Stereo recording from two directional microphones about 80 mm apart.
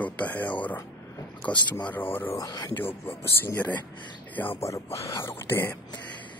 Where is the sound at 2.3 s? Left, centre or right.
Left.